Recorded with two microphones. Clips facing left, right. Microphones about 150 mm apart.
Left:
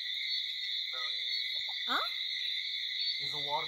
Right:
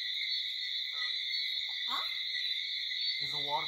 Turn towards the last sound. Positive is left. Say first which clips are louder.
# even
turn(degrees=0)  # may be behind; listen again after turning